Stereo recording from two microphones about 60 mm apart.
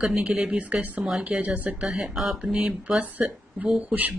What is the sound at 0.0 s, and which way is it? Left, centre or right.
Speech, centre.